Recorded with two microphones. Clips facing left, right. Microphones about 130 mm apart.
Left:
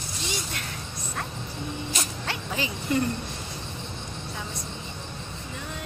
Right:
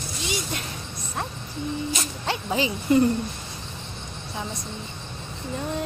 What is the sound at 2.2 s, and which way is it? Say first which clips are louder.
Speech: right 9 dB; 20° right (ahead or behind).